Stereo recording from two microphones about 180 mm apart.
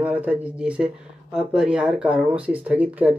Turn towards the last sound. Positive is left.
turn(degrees=-10)  # may be behind; listen again after turning